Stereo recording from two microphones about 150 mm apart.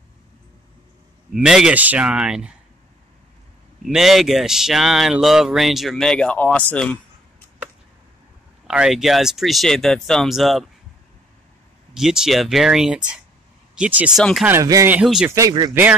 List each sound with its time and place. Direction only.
1.3 s speech: 5° right (ahead or behind)
3.8 s speech: centre (ahead or behind)
8.6 s speech: 5° right (ahead or behind)
11.9 s speech: 5° right (ahead or behind); by 15.0 s 20° right (ahead or behind)
15.0 s speech: 5° right (ahead or behind)
15.3 s speech: 25° right (ahead or behind)
15.7 s speech: 10° right (ahead or behind)